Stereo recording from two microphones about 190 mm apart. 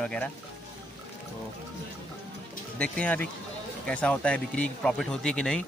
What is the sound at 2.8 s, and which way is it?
Speech, 5° left (ahead or behind).